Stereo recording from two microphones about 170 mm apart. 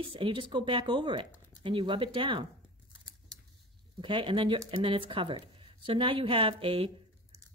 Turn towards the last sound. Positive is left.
turn(degrees=-30)  # may be behind; listen again after turning